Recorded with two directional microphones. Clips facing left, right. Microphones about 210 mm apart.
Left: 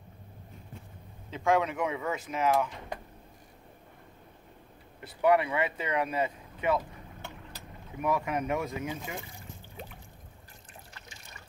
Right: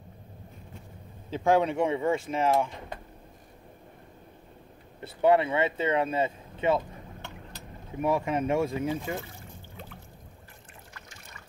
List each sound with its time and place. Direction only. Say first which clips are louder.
1.3 s speech: right 3 dB; 35° right (ahead or behind)
5.0 s speech: right 2 dB; 25° right (ahead or behind)
8.0 s speech: right 3 dB; 25° right (ahead or behind)